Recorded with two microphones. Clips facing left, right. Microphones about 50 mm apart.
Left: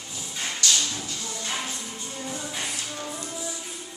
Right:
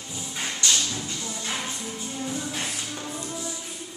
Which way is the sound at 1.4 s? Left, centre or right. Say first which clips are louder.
Even; centre.